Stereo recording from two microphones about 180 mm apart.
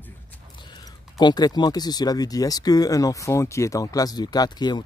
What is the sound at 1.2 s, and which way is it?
Speech, 20° left (ahead or behind).